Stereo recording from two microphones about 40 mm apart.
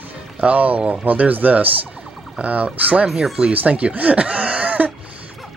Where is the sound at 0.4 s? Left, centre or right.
Right.